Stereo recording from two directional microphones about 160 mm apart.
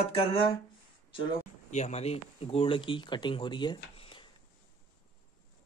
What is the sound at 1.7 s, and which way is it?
Speech, 45° left (ahead or behind).